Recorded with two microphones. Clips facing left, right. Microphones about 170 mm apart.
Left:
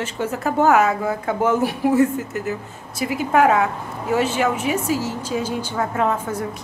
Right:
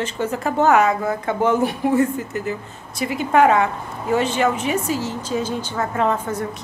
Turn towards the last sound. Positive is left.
turn(degrees=10)  # may be behind; listen again after turning